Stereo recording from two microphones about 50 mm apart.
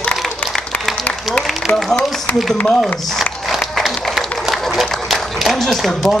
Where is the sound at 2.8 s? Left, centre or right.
Centre.